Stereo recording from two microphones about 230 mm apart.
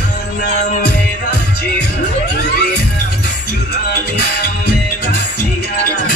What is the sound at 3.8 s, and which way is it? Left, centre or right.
Music, left.